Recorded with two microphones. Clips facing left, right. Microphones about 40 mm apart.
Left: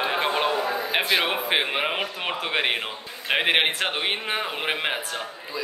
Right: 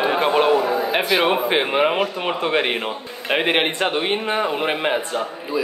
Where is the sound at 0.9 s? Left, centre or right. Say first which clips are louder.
Right 4 dB; centre.